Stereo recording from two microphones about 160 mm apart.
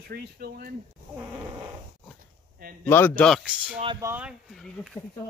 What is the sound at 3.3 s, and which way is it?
Speech, 5° right (ahead or behind).